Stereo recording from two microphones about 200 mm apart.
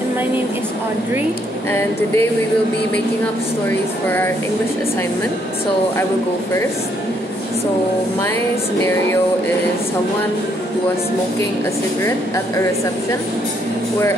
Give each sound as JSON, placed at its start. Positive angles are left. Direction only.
{"t": 1.7, "sound": "a woman's voice", "side_deg": 10}
{"t": 3.6, "sound": "a woman's voice", "side_deg": 10}